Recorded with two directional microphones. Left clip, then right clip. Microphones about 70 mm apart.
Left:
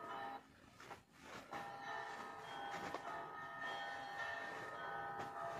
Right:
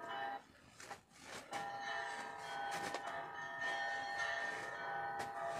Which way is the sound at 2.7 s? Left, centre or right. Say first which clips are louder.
Right 2 dB; left.